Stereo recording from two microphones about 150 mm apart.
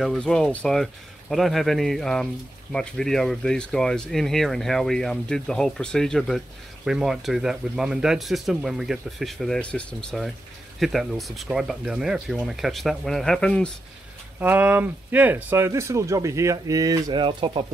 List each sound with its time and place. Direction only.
0.0 s speech: centre (ahead or behind)
14.4 s speech: 10° right (ahead or behind); by 17.6 s 30° right (ahead or behind)